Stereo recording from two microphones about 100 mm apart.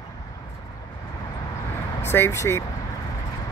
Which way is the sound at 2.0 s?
25° left (ahead or behind).